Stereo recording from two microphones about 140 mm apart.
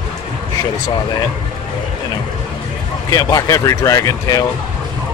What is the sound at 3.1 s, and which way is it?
Speech, 25° left (ahead or behind).